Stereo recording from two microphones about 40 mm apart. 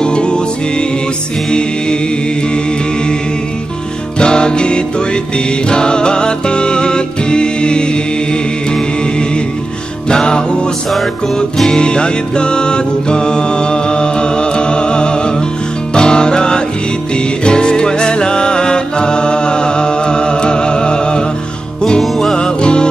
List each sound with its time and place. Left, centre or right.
0.0 s music: left
4.2 s music: left
10.0 s music: left
11.5 s music: centre
22.0 s music: centre
22.4 s music: left